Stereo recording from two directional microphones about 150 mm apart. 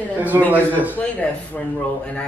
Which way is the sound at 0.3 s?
20° right (ahead or behind).